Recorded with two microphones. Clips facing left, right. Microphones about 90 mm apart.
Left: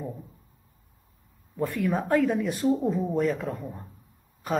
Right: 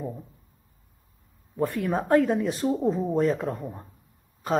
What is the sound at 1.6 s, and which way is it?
Speech, 20° right (ahead or behind).